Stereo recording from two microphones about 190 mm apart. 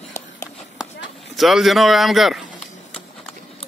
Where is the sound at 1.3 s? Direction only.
Centre (ahead or behind).